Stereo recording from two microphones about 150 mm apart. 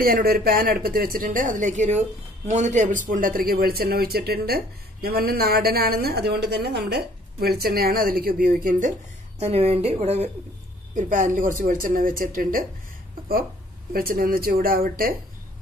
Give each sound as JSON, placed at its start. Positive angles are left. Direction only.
{"t": 0.0, "sound": "speech", "side_deg": -80}
{"t": 9.4, "sound": "a woman's voice", "side_deg": -45}
{"t": 11.0, "sound": "speech", "side_deg": -60}
{"t": 13.9, "sound": "speech", "side_deg": -75}